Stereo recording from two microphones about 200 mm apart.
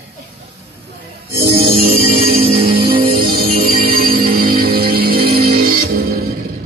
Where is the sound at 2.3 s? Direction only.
30° right (ahead or behind).